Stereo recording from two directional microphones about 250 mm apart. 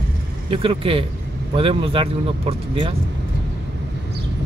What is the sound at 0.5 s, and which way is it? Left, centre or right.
Speech, right.